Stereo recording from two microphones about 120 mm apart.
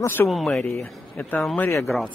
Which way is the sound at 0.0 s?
20° left (ahead or behind).